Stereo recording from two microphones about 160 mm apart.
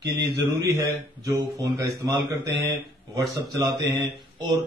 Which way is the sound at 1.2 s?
20° right (ahead or behind).